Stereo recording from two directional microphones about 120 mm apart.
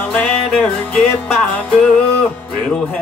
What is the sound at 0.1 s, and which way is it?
Music, 10° left (ahead or behind).